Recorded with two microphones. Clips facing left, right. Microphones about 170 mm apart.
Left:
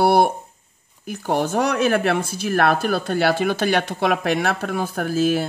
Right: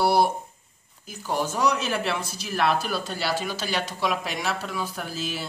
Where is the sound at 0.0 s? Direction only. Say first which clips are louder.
Left 5 dB; 55° left (ahead or behind).